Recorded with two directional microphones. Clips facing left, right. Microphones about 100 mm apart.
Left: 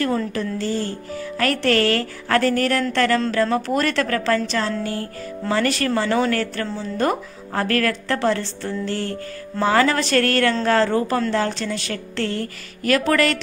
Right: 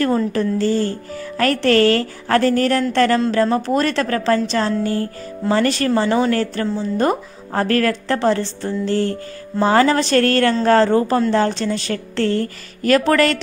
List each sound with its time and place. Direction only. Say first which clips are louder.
0.0 s a woman's voice: right 4 dB; 40° right (ahead or behind)
10.9 s a woman's voice: right 4 dB; 25° right (ahead or behind)